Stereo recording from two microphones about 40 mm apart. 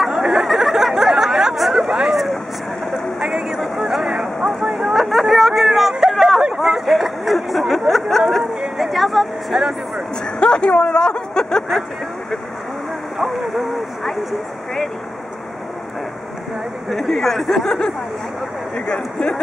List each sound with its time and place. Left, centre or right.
0.0 s chatter: centre
1.9 s a sound: centre
3.2 s vehicle: centre
5.1 s a sound: centre
8.7 s vehicle: centre
9.6 s speech: centre
10.4 s speech: left
13.2 s speech: centre
16.9 s speech: centre